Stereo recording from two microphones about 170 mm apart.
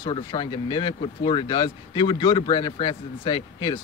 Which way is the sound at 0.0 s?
30° left (ahead or behind).